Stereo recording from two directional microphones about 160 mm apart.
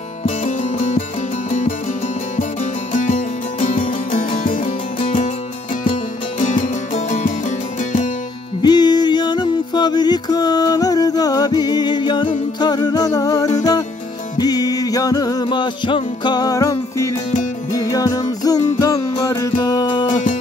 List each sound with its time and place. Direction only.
0.7 s music: 40° left (ahead or behind)
2.9 s music: 50° left (ahead or behind)
5.0 s music: 45° left (ahead or behind)
6.4 s music: 50° left (ahead or behind)
8.6 s music: 25° left (ahead or behind)